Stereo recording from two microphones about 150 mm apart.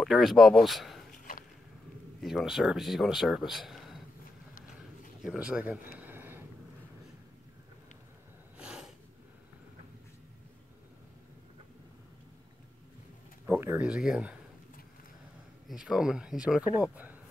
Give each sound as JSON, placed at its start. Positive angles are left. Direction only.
{"t": 0.0, "sound": "speech", "side_deg": 0}
{"t": 1.1, "sound": "a sound", "side_deg": 70}
{"t": 2.2, "sound": "speech", "side_deg": 0}
{"t": 5.2, "sound": "speech", "side_deg": -5}
{"t": 5.9, "sound": "a sound", "side_deg": -15}
{"t": 8.5, "sound": "snort", "side_deg": -5}
{"t": 13.5, "sound": "speech", "side_deg": -15}
{"t": 15.7, "sound": "speech", "side_deg": -5}